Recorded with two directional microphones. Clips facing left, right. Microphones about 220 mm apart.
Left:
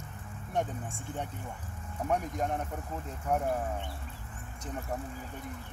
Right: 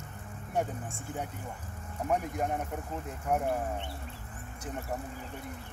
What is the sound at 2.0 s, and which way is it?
Speech, 5° right (ahead or behind).